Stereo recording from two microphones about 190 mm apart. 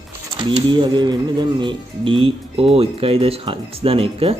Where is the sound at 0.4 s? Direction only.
25° right (ahead or behind).